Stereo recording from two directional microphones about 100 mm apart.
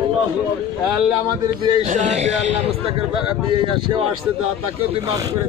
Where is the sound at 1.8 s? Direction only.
90° right; by 4.1 s 60° right (ahead or behind).